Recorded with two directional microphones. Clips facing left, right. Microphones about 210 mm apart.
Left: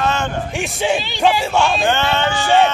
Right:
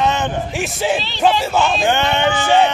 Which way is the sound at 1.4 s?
Centre (ahead or behind).